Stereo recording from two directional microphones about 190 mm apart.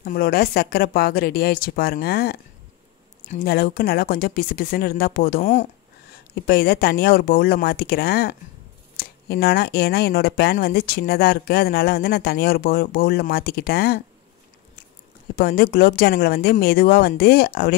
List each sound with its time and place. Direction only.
0.0 s speech: 50° left (ahead or behind)
3.4 s speech: 50° left (ahead or behind)
6.4 s speech: 55° left (ahead or behind)
15.3 s speech: 55° left (ahead or behind)